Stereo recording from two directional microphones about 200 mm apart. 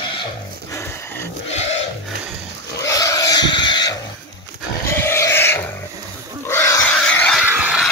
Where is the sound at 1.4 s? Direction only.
35° left (ahead or behind).